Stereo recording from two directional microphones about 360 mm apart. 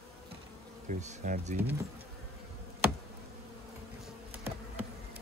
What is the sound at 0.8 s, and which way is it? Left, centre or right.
Speech, right.